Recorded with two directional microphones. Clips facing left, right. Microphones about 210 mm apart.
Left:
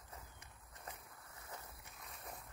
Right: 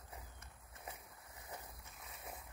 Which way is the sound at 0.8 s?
15° right (ahead or behind).